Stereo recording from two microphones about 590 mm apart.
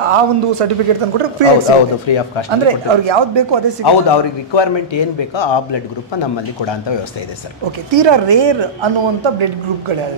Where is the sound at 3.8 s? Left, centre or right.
Left.